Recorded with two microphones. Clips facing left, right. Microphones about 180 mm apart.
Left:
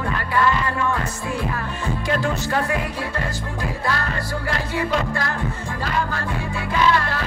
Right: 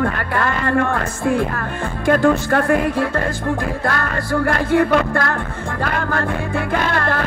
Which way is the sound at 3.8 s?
55° right (ahead or behind).